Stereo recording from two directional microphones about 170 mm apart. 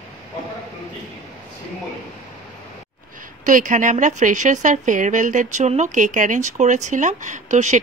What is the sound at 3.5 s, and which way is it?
A woman's voice, 50° right (ahead or behind).